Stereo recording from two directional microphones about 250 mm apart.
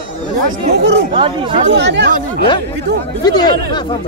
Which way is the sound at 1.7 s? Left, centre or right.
Right.